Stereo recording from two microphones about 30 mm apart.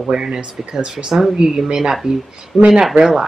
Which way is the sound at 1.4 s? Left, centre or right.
Right.